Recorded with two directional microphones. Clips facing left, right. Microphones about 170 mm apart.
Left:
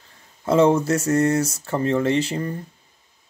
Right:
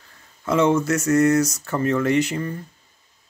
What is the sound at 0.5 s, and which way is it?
Speech, 35° left (ahead or behind).